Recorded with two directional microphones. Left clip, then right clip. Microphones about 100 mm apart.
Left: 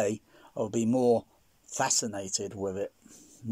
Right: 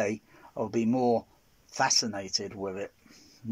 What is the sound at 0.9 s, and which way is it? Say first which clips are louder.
Speech: left 2 dB; 10° left (ahead or behind).